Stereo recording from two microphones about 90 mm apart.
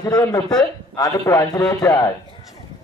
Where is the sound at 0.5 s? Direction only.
45° left (ahead or behind).